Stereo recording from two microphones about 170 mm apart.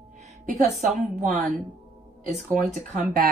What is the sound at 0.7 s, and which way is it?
Speech, 45° right (ahead or behind).